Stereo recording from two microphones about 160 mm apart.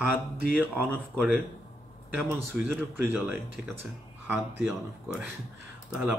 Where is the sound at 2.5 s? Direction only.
10° right (ahead or behind).